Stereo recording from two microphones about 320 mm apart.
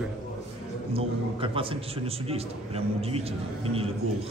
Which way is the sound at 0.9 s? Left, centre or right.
Centre.